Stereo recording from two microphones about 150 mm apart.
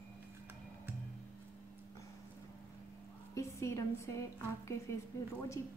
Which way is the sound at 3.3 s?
20° left (ahead or behind).